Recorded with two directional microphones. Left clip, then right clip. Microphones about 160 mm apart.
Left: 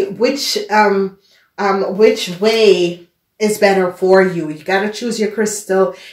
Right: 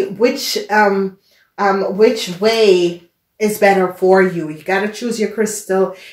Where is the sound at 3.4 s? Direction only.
20° right (ahead or behind).